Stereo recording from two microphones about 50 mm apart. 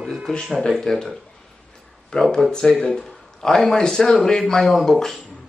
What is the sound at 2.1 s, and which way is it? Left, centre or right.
A man's voice, centre.